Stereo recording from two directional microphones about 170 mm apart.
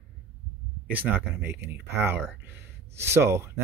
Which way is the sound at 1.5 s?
75° right (ahead or behind).